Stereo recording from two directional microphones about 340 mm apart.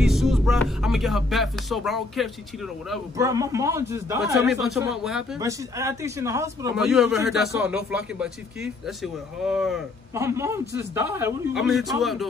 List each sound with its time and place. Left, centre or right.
0.0 s music: centre
10.6 s a man's voice: centre
11.9 s music: centre